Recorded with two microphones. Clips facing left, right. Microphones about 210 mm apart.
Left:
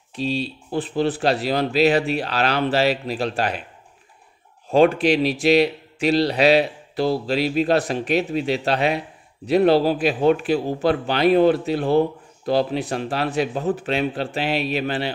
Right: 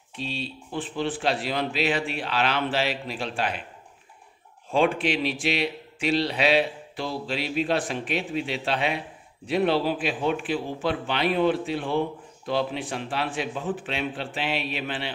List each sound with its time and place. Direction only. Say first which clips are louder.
0.1 s a man's voice: left 8 dB; 40° left (ahead or behind)
4.6 s a man's voice: left 7 dB; 40° left (ahead or behind)